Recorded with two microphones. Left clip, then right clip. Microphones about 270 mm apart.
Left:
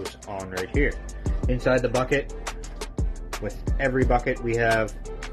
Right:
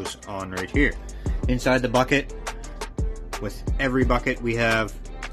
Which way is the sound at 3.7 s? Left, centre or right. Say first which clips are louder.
Even; right.